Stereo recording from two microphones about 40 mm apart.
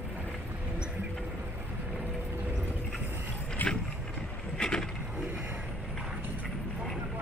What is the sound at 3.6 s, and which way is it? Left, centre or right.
Boat, left.